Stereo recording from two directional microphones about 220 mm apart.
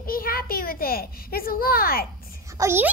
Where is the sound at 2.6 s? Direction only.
10° right (ahead or behind).